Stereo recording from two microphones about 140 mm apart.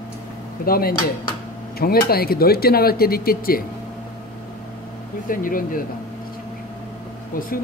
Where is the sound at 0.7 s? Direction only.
90° left.